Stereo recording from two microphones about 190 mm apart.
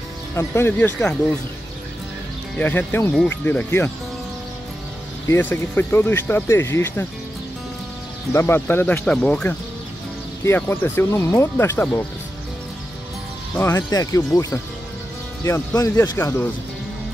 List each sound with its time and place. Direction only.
0.4 s speech: 10° left (ahead or behind)
2.5 s speech: 10° left (ahead or behind)
5.3 s speech: 10° left (ahead or behind)
8.3 s speech: 10° left (ahead or behind)
13.6 s speech: 15° left (ahead or behind)